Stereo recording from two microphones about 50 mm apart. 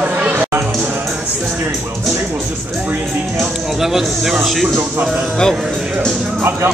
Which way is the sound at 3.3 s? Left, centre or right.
Centre.